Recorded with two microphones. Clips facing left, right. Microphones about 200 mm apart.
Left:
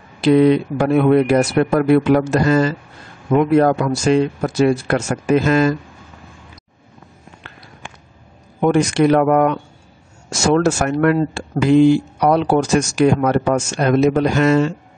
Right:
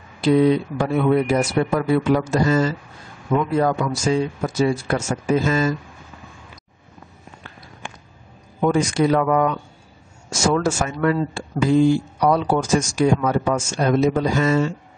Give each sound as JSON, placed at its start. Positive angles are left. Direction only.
{"t": 0.2, "sound": "speech", "side_deg": 70}
{"t": 8.5, "sound": "speech", "side_deg": 65}
{"t": 10.4, "sound": "speech", "side_deg": 70}